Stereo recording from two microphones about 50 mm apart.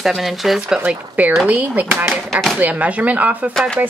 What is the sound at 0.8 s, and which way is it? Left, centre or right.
Speech, right.